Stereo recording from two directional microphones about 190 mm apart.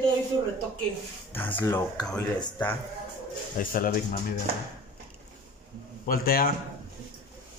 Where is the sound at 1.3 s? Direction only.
10° left (ahead or behind).